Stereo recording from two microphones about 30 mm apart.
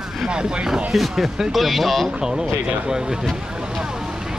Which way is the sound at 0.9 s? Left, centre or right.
Centre.